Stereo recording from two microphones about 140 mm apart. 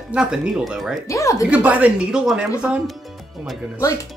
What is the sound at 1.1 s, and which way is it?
Speech, 20° left (ahead or behind).